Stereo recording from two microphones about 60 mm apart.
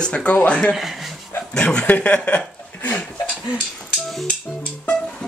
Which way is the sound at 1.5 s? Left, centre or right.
Centre.